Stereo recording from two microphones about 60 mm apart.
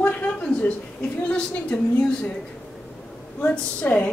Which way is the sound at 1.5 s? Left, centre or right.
Left.